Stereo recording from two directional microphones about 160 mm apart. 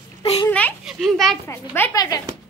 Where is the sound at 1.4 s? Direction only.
15° left (ahead or behind).